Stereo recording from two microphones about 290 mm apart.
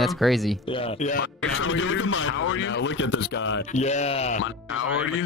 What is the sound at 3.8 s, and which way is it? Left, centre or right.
Speech, left.